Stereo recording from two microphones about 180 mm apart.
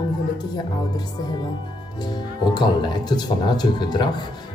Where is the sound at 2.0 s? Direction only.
25° left (ahead or behind).